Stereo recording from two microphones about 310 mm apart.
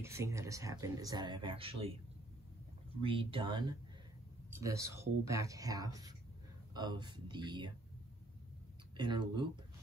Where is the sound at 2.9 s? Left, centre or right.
Centre.